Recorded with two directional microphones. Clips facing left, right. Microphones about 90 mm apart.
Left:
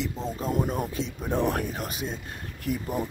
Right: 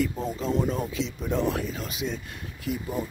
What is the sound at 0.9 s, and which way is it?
Speech, 50° left (ahead or behind).